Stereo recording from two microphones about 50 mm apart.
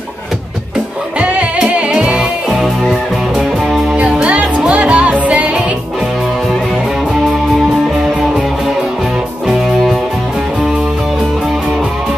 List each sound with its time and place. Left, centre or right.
1.2 s music: right
2.6 s music: centre
3.9 s music: right